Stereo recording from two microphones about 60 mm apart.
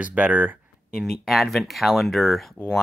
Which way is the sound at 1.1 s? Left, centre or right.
Centre.